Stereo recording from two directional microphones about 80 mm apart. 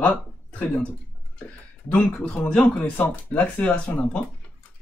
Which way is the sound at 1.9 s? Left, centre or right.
Centre.